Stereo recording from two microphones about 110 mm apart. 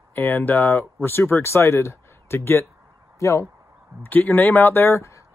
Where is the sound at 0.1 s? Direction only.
20° left (ahead or behind).